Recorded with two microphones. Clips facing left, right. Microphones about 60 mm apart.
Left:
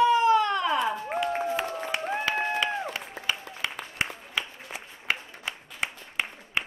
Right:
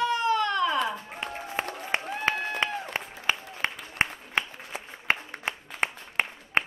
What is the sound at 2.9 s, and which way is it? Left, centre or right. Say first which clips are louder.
Applause: right 2 dB; right.